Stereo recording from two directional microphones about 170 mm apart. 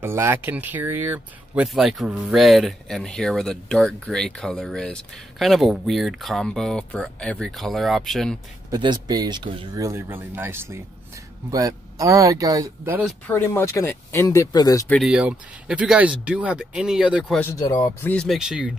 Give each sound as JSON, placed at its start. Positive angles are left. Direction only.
{"t": 0.0, "sound": "speech", "side_deg": -15}
{"t": 8.6, "sound": "speech", "side_deg": -25}
{"t": 13.3, "sound": "speech", "side_deg": 15}
{"t": 14.9, "sound": "speech", "side_deg": 0}
{"t": 17.4, "sound": "speech", "side_deg": 15}